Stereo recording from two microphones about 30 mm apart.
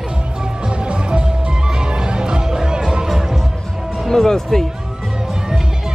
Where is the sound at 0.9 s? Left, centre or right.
Right.